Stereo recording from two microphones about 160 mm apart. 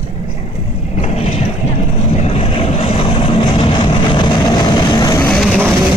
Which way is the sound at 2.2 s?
35° left (ahead or behind).